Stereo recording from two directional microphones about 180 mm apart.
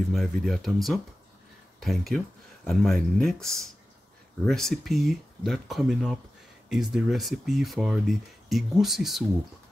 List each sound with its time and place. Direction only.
0.1 s speech: centre (ahead or behind)
4.5 s speech: centre (ahead or behind)